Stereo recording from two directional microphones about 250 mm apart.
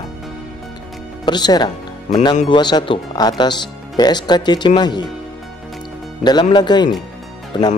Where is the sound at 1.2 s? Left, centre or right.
Centre.